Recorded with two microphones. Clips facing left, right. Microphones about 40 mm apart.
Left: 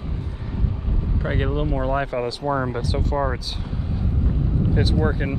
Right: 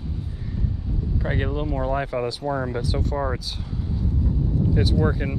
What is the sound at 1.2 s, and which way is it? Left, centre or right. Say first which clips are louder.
Speech: left 2 dB; centre.